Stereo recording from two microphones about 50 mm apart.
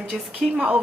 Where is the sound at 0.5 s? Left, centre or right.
Right.